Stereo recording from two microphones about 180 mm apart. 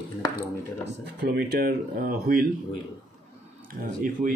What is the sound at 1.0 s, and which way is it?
Speech, 65° right (ahead or behind).